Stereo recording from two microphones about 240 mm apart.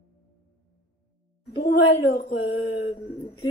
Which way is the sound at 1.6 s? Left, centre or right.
Left.